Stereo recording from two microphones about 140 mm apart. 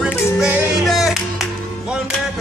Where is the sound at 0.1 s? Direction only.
20° left (ahead or behind).